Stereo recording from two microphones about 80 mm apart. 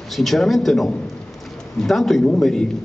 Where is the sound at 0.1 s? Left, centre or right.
Centre.